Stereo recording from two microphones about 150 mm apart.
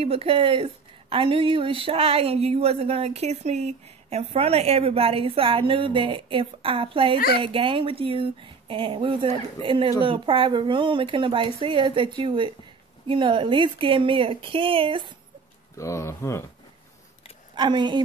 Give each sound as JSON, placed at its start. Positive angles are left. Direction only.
{"t": 0.0, "sound": "speech", "side_deg": -40}
{"t": 7.2, "sound": "speech", "side_deg": 90}
{"t": 7.4, "sound": "speech", "side_deg": -35}
{"t": 15.7, "sound": "speech", "side_deg": 20}
{"t": 17.6, "sound": "speech", "side_deg": -30}